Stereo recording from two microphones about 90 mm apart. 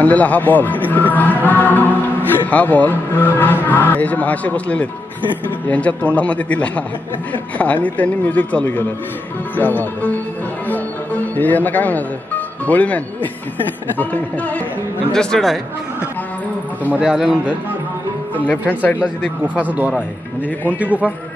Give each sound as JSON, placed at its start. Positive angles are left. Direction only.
{"t": 0.0, "sound": "a man's voice", "side_deg": 15}
{"t": 10.7, "sound": "music", "side_deg": 20}
{"t": 12.6, "sound": "a man's voice", "side_deg": 15}
{"t": 15.1, "sound": "speech", "side_deg": 5}
{"t": 17.0, "sound": "a man's voice", "side_deg": -5}
{"t": 18.7, "sound": "speech", "side_deg": 20}
{"t": 19.4, "sound": "a man's voice", "side_deg": -15}